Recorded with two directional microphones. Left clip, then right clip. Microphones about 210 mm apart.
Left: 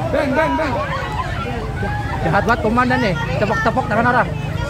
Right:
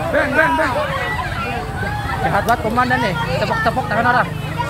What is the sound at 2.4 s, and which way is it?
Speech, 45° left (ahead or behind).